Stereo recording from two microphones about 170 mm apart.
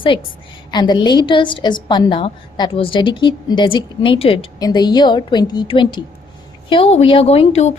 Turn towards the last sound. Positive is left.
turn(degrees=40)  # may be behind; listen again after turning